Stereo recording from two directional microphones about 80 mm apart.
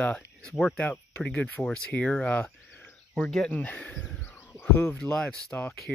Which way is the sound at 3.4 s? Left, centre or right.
Centre.